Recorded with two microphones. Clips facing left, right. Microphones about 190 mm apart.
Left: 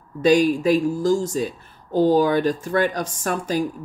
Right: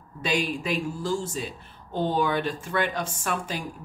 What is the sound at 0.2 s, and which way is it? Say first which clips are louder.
Speech: left 11 dB; 45° left (ahead or behind).